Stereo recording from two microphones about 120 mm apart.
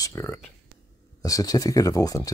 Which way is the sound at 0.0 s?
20° left (ahead or behind).